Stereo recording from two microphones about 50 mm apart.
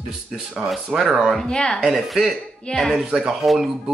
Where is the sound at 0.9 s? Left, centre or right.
Centre.